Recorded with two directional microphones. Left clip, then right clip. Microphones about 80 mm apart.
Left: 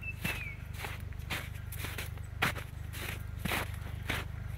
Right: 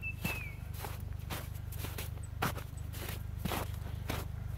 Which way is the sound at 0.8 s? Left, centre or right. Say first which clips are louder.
Left 3 dB; right.